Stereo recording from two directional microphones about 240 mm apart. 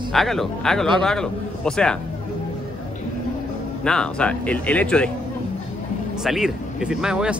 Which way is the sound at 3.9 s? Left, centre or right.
Centre.